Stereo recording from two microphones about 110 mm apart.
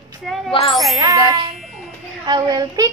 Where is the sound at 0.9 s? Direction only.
35° right (ahead or behind).